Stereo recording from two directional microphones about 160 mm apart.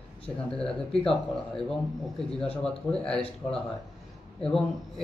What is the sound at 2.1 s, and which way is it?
A man's voice, 5° left (ahead or behind).